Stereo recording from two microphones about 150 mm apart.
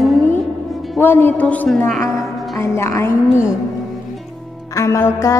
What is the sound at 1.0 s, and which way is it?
Music, 15° left (ahead or behind).